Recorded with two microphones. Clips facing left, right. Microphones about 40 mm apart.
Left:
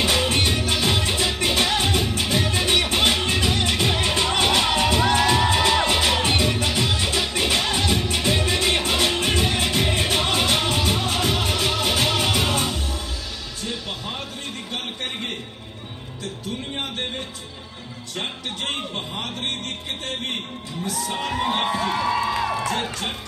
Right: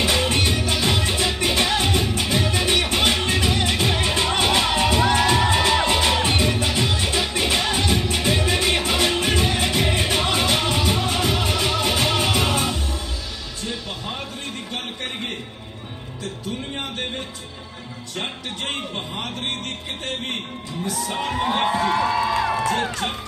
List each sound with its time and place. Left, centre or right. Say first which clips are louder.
0.0 s music: even; centre
18.2 s music: even; centre
20.8 s music: right 1 dB; centre
22.4 s music: right 2 dB; right